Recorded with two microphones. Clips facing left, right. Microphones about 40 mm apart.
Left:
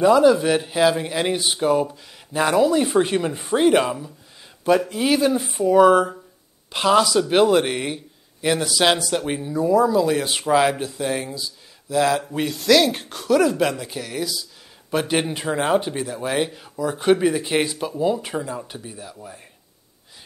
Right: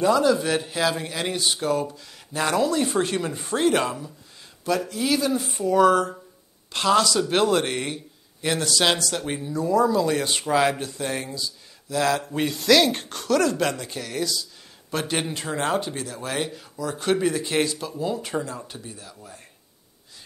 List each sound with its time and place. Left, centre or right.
0.0 s speech: centre
4.6 s speech: left
5.5 s speech: centre